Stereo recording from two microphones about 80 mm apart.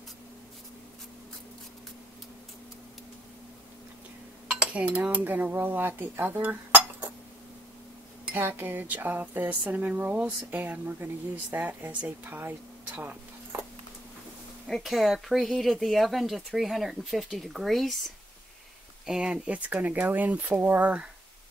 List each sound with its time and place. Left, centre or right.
4.5 s speech: centre
8.4 s speech: right
14.7 s speech: centre
19.0 s speech: centre